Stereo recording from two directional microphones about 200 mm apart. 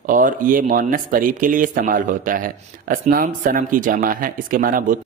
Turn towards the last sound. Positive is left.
turn(degrees=-45)  # may be behind; listen again after turning